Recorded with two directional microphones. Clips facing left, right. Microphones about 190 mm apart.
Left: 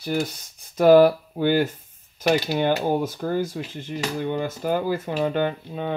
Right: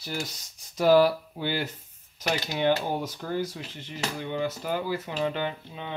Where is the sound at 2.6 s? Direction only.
50° left (ahead or behind).